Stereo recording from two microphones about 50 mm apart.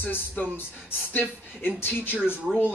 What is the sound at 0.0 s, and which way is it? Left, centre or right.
Speech, left.